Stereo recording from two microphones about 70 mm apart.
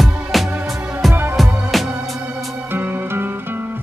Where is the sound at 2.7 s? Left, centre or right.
Right.